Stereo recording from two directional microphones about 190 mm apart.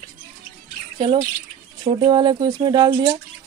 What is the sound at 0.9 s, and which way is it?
Speech, 25° right (ahead or behind).